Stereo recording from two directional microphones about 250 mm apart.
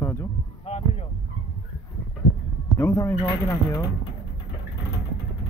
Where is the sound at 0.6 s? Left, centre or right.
Left.